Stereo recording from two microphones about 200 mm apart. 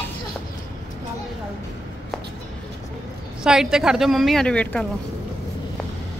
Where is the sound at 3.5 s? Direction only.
5° right (ahead or behind).